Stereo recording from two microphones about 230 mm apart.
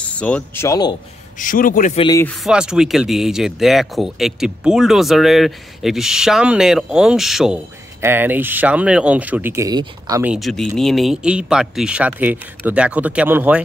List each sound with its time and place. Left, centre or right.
0.0 s speech: centre
1.4 s a man's voice: left
2.0 s speech: centre
2.4 s speech: centre
10.3 s speech: centre